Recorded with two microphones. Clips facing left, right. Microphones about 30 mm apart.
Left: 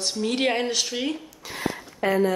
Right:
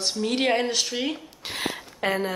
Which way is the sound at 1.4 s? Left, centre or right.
Right.